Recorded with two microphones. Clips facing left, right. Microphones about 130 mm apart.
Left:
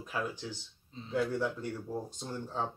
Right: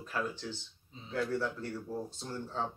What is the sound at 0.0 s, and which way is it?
Speech, 10° left (ahead or behind).